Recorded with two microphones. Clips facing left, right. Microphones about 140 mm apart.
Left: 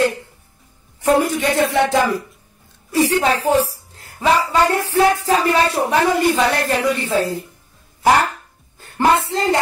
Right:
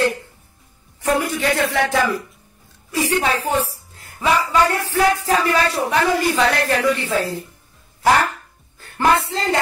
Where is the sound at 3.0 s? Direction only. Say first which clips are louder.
Left 3 dB; 35° left (ahead or behind).